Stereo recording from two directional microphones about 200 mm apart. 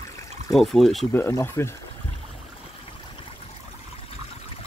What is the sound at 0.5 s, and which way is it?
Speech, centre (ahead or behind).